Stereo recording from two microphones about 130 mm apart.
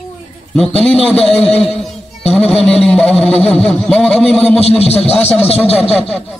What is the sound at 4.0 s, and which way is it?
A man's voice, 50° left (ahead or behind).